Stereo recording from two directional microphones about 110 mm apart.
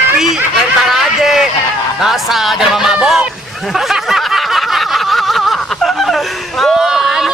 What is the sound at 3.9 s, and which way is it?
Snicker, centre (ahead or behind).